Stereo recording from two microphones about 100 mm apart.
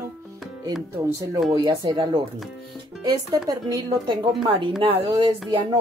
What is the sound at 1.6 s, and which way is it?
Speech, 45° right (ahead or behind).